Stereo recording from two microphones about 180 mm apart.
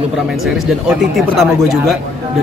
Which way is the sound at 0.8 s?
Centre (ahead or behind).